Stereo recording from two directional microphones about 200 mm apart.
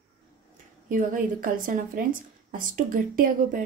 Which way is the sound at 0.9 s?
40° right (ahead or behind).